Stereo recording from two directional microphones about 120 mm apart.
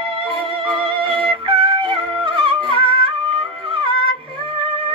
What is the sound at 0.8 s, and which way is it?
Music, 45° right (ahead or behind).